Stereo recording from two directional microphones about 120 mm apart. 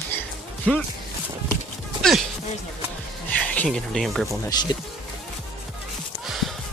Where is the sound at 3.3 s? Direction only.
10° left (ahead or behind).